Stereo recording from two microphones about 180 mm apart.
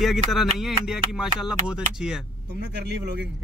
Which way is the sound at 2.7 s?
70° right (ahead or behind).